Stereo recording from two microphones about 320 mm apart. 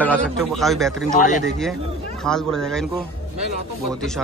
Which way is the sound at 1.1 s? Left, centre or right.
Left.